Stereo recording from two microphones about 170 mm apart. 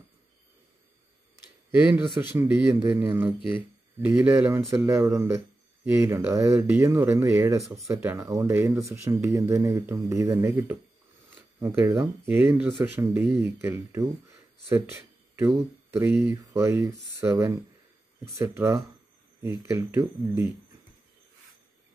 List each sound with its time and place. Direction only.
1.9 s speech: 10° right (ahead or behind)